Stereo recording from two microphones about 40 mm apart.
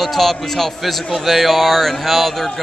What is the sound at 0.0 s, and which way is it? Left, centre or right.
A man's voice, centre.